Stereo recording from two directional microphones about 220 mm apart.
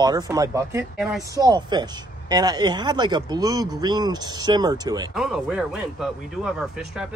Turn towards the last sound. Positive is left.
turn(degrees=0)  # may be behind; listen again after turning